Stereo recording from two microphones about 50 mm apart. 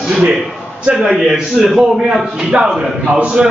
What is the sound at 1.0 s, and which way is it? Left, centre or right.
A man's voice, centre.